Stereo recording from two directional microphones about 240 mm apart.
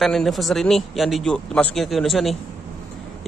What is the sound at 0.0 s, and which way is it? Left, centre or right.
Speech, centre.